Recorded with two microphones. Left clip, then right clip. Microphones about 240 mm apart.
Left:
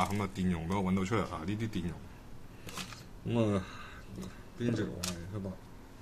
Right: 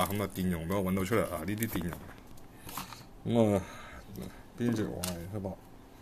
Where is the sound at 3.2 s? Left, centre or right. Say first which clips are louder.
Right 5 dB; right.